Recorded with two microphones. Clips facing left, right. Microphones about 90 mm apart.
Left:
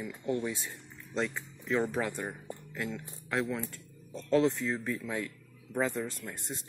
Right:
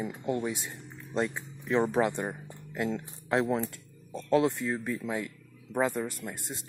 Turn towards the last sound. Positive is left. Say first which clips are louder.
# right 2 dB
turn(degrees=-15)  # may be behind; listen again after turning